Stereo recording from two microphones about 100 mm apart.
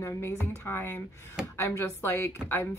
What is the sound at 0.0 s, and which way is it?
A woman's voice, 25° left (ahead or behind).